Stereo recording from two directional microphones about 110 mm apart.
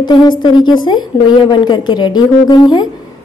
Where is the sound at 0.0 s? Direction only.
40° left (ahead or behind).